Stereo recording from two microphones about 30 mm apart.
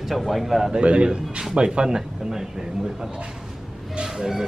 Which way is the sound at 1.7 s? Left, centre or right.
Right.